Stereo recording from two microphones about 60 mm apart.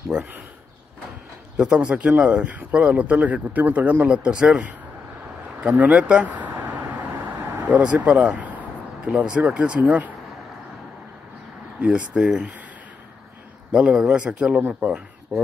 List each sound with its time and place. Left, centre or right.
0.1 s speech: centre
1.6 s speech: centre
5.8 s speech: right
7.6 s speech: right
9.0 s speech: centre
11.8 s speech: centre
13.7 s speech: centre